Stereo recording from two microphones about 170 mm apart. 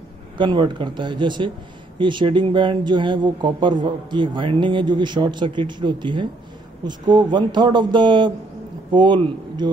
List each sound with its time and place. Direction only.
0.4 s speech: 25° right (ahead or behind)